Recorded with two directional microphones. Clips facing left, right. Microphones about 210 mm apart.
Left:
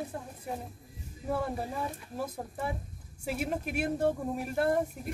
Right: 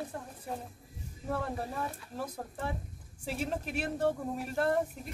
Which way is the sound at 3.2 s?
10° left (ahead or behind).